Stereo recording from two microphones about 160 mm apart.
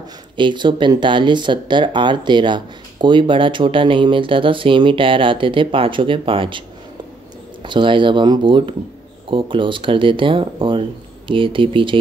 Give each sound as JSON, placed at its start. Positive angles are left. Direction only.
{"t": 0.4, "sound": "speech", "side_deg": -30}
{"t": 7.6, "sound": "speech", "side_deg": -30}